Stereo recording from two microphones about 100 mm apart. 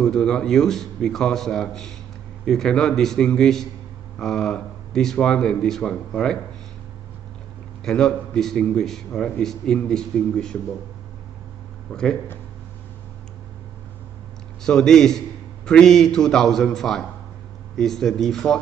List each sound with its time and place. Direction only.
0.0 s a man's voice: 5° left (ahead or behind)
7.8 s a man's voice: 5° left (ahead or behind)
11.9 s speech: 5° left (ahead or behind)
14.6 s a man's voice: 5° left (ahead or behind)